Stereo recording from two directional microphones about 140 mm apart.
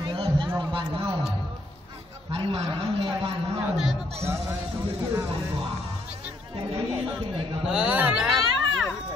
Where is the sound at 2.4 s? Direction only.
50° right (ahead or behind).